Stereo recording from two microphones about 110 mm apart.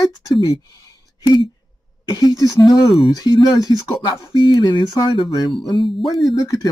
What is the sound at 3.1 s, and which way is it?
Speech, 35° left (ahead or behind).